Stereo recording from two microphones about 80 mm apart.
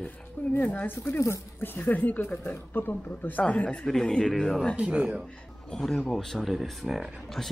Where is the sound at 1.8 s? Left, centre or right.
Left; by 4.7 s centre.